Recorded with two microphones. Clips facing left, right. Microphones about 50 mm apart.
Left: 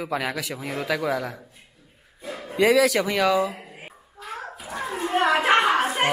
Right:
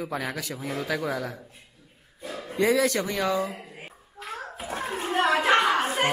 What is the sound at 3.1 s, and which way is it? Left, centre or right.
Speech, left.